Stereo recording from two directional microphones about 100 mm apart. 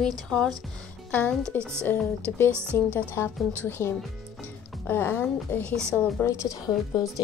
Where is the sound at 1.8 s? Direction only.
20° left (ahead or behind).